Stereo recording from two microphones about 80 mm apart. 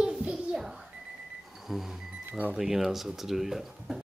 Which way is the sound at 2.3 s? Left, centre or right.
Right.